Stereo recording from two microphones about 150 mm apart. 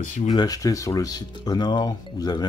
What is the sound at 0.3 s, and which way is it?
Speech, 25° left (ahead or behind).